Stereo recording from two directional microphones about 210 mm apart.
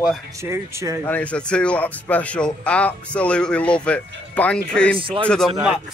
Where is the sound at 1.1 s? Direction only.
5° left (ahead or behind).